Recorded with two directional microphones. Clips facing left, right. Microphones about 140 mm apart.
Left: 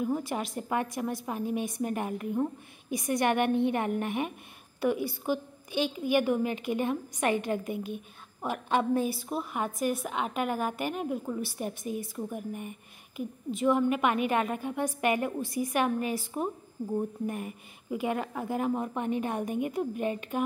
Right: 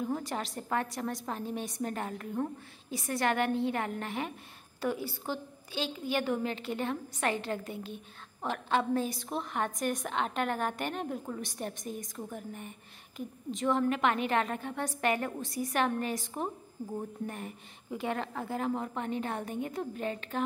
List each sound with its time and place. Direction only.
0.0 s a woman's voice: 10° left (ahead or behind)
17.3 s a woman's voice: 10° left (ahead or behind)